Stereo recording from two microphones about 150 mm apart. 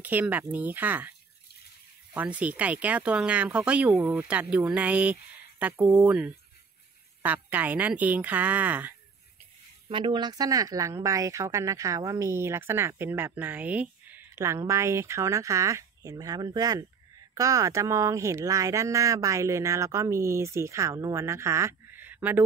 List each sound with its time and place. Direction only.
0.0 s speech: 10° right (ahead or behind)
2.1 s speech: 10° right (ahead or behind)
9.8 s speech: 35° right (ahead or behind); by 22.4 s 10° right (ahead or behind)